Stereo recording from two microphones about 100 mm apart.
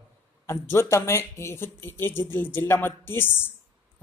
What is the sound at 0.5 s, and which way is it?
Speech, 25° left (ahead or behind).